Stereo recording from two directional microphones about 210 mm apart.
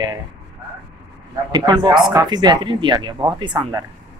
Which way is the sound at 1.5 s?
20° right (ahead or behind).